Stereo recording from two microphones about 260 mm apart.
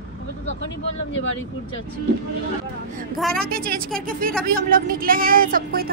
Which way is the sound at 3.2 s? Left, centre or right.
Centre.